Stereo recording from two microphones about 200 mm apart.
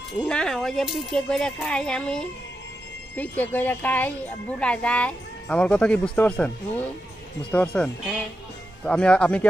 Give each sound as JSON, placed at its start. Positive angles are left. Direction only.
{"t": 0.2, "sound": "a woman's voice", "side_deg": 5}